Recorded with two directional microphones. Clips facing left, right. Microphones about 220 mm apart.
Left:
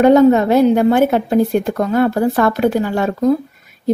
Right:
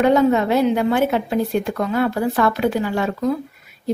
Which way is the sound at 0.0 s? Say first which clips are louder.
Left 6 dB; 45° left (ahead or behind).